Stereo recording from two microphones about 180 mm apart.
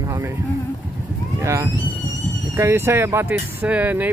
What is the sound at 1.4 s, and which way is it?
Speech, 15° right (ahead or behind).